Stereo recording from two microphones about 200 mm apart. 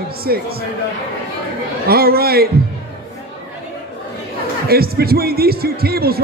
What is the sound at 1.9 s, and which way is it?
Speech, 50° right (ahead or behind).